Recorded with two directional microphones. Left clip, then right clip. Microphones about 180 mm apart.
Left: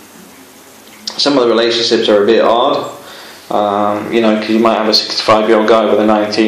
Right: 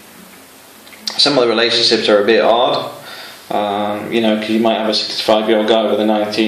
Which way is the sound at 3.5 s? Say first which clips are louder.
Left 5 dB; 15° right (ahead or behind).